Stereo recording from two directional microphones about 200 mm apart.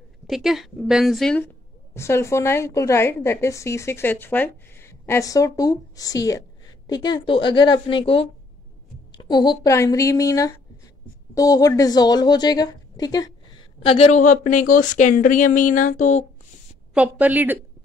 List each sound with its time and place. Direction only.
0.3 s a woman's voice: centre (ahead or behind)
2.0 s a woman's voice: 15° left (ahead or behind)
13.8 s speech: 30° left (ahead or behind)
16.9 s a woman's voice: 5° right (ahead or behind)